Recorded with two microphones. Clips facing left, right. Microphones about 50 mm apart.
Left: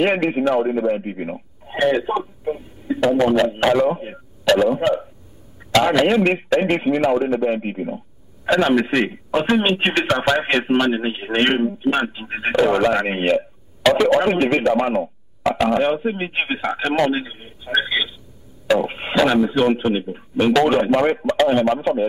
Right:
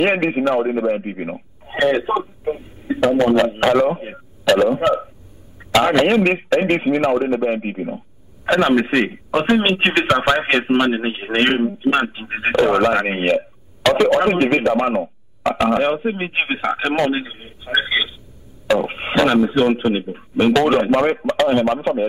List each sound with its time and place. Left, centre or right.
0.0 s a man's voice: centre
0.6 s radio: centre
3.2 s a man's voice: centre
13.8 s a man's voice: centre
14.2 s a man's voice: centre
19.8 s a man's voice: centre